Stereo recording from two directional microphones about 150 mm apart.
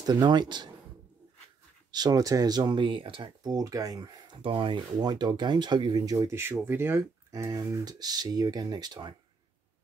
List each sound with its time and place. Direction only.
0.0 s speech: 25° right (ahead or behind)
1.9 s speech: 25° right (ahead or behind)